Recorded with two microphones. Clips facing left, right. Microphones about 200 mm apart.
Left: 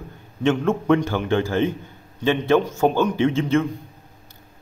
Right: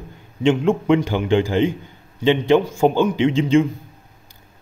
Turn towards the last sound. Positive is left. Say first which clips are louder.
# right 3 dB
turn(degrees=-15)  # may be behind; listen again after turning